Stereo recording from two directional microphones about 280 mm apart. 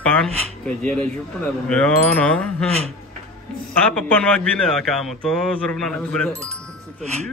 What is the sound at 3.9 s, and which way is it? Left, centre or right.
A man's voice, centre.